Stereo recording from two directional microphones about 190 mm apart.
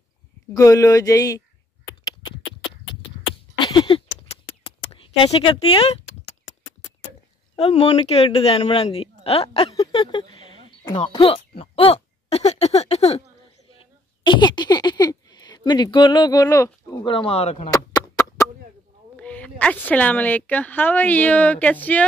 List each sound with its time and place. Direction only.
0.5 s a woman's voice: 15° left (ahead or behind)
2.0 s beatboxing: 20° left (ahead or behind)
3.5 s a sound: 25° left (ahead or behind)
4.9 s speech: 30° left (ahead or behind)
7.5 s speech: 30° left (ahead or behind); by 17.0 s 15° left (ahead or behind)
17.0 s speech: 25° left (ahead or behind)
17.6 s a sound: 15° left (ahead or behind)
19.1 s a woman's voice: 5° left (ahead or behind)